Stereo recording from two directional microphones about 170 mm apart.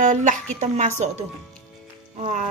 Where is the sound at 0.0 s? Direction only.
45° right (ahead or behind).